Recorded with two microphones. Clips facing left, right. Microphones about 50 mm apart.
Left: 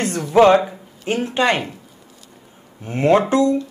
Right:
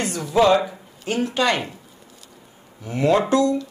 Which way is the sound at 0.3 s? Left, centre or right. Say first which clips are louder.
Left 5 dB; left.